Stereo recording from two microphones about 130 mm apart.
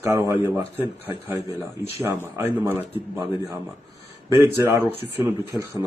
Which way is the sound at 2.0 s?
15° right (ahead or behind).